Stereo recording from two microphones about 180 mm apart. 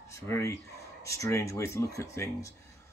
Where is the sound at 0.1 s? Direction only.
15° left (ahead or behind).